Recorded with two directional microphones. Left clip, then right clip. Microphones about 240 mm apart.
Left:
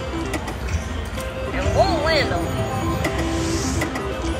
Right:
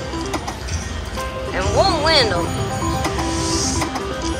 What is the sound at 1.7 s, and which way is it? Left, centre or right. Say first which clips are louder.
Music: right 3 dB; right.